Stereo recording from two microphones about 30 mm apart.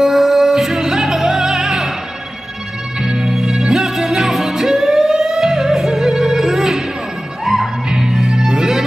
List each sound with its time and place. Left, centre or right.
0.0 s music: centre
3.0 s music: right
3.3 s music: centre
7.9 s music: centre